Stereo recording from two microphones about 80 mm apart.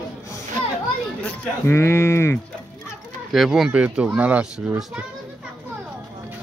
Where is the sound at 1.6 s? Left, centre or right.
Left.